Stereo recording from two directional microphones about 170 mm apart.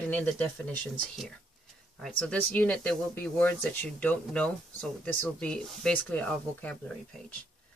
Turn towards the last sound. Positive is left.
turn(degrees=10)  # may be behind; listen again after turning